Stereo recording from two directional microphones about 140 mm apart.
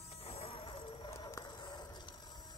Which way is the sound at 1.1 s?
20° left (ahead or behind).